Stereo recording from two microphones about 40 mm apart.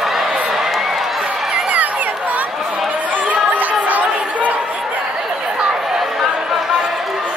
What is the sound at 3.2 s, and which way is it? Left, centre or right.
Chatter, right.